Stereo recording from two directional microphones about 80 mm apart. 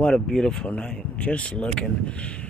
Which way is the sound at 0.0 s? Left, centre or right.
Centre.